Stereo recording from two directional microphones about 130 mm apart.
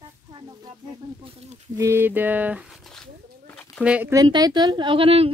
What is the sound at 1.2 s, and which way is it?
Speech, 50° right (ahead or behind).